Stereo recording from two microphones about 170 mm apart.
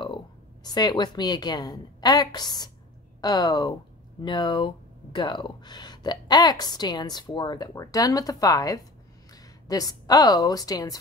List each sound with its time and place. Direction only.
0.7 s a woman's voice: 25° left (ahead or behind)